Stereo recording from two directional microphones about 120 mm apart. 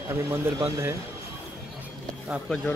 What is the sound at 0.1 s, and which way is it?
Speech, 20° right (ahead or behind).